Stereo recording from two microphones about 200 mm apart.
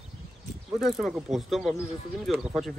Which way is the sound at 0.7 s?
Centre (ahead or behind).